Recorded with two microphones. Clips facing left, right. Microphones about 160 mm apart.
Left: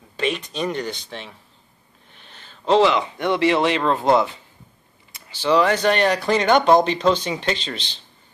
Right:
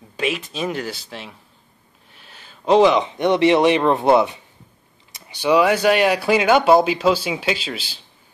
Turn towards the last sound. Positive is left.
turn(degrees=-5)  # may be behind; listen again after turning